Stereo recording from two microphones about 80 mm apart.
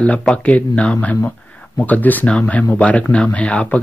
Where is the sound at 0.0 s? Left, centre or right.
Centre.